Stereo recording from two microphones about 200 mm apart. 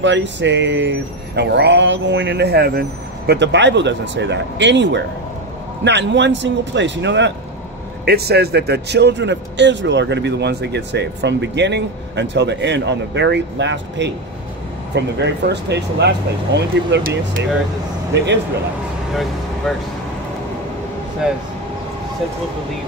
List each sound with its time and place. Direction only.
0.0 s speech: 65° right (ahead or behind)
8.0 s speech: 50° right (ahead or behind)